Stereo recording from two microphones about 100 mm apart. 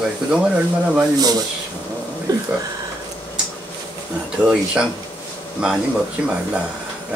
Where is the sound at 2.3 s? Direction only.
40° right (ahead or behind).